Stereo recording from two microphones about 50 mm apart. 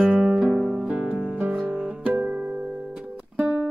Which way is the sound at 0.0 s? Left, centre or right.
Centre.